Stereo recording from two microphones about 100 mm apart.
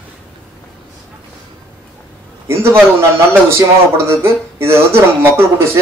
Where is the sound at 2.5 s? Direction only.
25° right (ahead or behind).